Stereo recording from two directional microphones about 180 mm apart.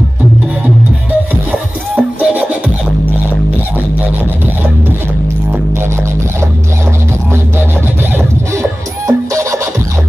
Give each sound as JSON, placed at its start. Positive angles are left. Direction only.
{"t": 1.3, "sound": "music", "side_deg": -10}
{"t": 9.0, "sound": "music", "side_deg": -15}